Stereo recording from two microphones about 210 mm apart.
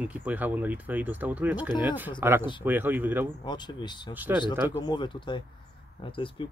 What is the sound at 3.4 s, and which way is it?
Speech, 20° left (ahead or behind).